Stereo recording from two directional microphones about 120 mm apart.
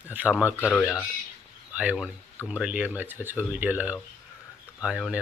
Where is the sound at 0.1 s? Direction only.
15° right (ahead or behind).